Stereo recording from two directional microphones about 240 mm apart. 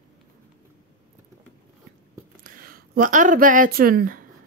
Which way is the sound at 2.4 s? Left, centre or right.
Right.